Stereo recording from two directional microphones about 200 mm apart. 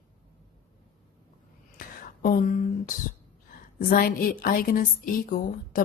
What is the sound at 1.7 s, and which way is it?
Whispering, 45° left (ahead or behind).